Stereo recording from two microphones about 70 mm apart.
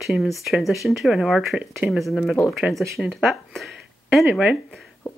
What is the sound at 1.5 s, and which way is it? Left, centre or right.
Speech, centre.